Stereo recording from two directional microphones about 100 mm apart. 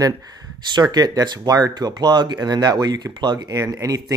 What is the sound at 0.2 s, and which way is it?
Speech, 40° right (ahead or behind).